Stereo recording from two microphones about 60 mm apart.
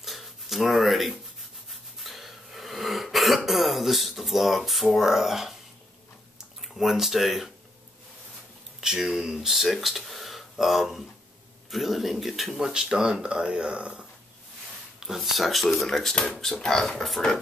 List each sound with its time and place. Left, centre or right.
0.0 s a sound: centre
1.7 s cough: centre
6.6 s speech: centre
8.8 s speech: centre
15.0 s speech: centre